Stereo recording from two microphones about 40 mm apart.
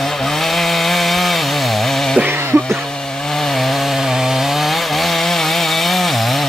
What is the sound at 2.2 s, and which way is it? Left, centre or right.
Music, right.